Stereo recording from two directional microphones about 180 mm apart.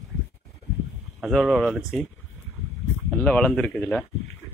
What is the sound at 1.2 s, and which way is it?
Speech, centre (ahead or behind).